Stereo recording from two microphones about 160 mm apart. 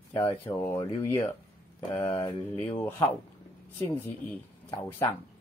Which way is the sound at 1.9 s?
25° left (ahead or behind).